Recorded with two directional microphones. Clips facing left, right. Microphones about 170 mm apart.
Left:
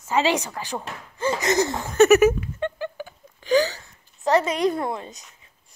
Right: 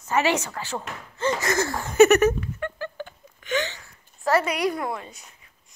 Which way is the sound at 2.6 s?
25° left (ahead or behind).